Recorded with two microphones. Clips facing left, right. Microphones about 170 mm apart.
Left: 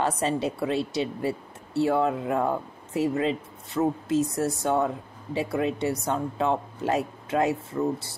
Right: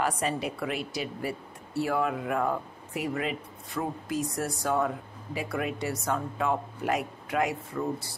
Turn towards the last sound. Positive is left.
turn(degrees=25)  # may be behind; listen again after turning